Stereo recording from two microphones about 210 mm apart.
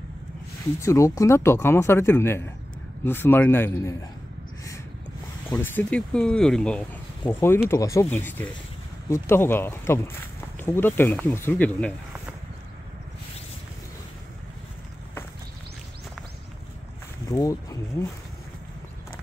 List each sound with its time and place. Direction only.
0.7 s speech: 15° left (ahead or behind)
5.5 s speech: 10° left (ahead or behind)
17.3 s speech: 15° left (ahead or behind)